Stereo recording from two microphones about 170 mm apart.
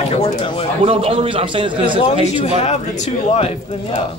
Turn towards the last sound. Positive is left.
turn(degrees=40)  # may be behind; listen again after turning